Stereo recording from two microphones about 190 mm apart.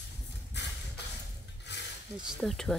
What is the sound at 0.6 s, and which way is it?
Beatboxing, 65° left (ahead or behind).